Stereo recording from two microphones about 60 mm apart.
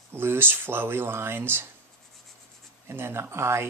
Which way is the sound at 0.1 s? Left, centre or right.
Right.